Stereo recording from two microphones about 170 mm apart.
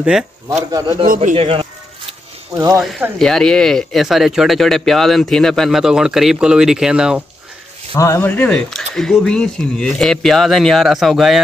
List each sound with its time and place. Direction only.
0.7 s a man's voice: 20° right (ahead or behind)
1.0 s a man's voice: 55° right (ahead or behind)
1.3 s speech: 35° right (ahead or behind)
2.5 s a man's voice: 20° right (ahead or behind)
3.2 s speech: 5° left (ahead or behind)
7.9 s speech: 15° left (ahead or behind); by 11.4 s centre (ahead or behind)